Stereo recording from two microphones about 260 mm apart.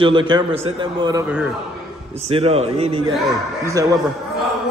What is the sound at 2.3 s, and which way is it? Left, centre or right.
A man's voice, right.